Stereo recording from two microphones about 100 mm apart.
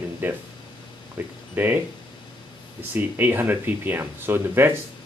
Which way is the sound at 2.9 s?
20° right (ahead or behind).